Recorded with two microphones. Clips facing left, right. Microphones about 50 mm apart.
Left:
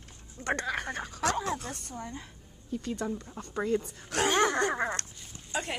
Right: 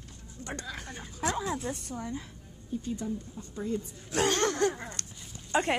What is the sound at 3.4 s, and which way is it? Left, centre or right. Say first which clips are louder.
Speech: left 8 dB; left.